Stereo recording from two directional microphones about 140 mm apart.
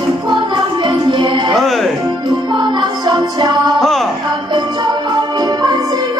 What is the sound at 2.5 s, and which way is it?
Music, 30° right (ahead or behind).